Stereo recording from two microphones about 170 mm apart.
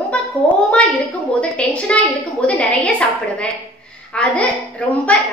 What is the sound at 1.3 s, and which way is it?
A woman's voice, 5° left (ahead or behind).